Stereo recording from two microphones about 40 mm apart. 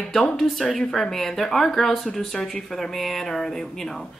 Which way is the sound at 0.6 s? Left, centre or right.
Centre.